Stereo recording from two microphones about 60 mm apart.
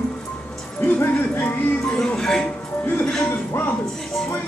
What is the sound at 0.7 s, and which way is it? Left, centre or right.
Speech, left.